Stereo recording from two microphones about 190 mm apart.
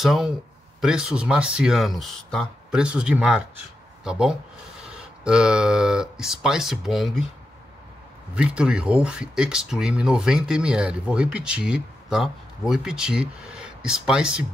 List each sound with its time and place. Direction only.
0.0 s speech: centre (ahead or behind)
8.4 s speech: 5° right (ahead or behind)